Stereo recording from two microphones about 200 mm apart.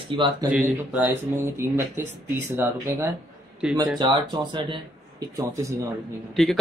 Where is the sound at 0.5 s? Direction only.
5° right (ahead or behind).